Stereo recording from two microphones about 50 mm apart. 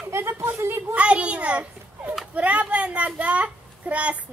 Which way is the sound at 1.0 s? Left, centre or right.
Right.